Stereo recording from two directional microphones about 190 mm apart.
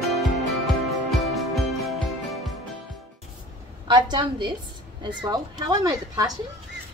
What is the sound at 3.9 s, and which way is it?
Speech, 25° right (ahead or behind).